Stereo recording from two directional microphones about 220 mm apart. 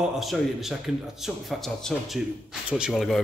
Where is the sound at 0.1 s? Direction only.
Centre (ahead or behind).